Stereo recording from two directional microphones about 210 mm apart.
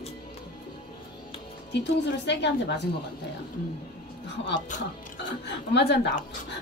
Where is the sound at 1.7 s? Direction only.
55° left (ahead or behind).